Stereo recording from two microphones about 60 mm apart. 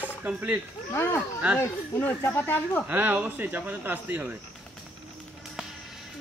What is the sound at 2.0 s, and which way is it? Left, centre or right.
Speech, left.